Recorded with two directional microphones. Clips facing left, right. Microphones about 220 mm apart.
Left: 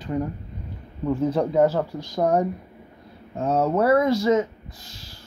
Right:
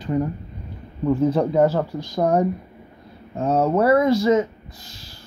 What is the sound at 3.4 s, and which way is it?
Speech, 30° right (ahead or behind).